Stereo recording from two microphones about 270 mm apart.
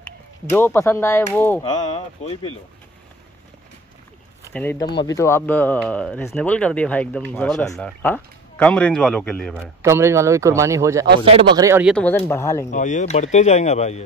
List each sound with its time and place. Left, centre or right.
0.0 s speech: centre
1.6 s speech: left
4.6 s speech: centre
9.8 s speech: centre
11.9 s speech: centre
12.7 s speech: left